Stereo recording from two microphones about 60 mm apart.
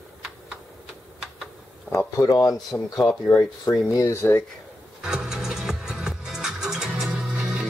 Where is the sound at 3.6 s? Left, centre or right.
Left.